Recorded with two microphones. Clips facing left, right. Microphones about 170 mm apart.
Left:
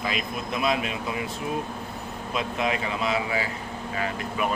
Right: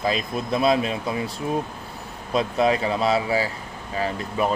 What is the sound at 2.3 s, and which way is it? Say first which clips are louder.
Speech: right 7 dB; 35° right (ahead or behind).